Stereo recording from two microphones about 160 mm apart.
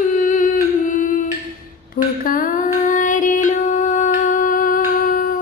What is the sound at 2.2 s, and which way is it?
Music, 60° left (ahead or behind).